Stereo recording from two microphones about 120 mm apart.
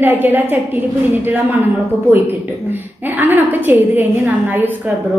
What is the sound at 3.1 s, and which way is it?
A woman's voice, 15° right (ahead or behind).